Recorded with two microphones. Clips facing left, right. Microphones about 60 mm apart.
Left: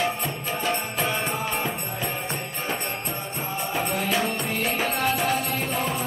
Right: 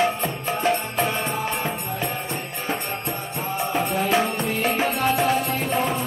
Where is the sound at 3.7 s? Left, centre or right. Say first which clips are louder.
Right 4 dB; right.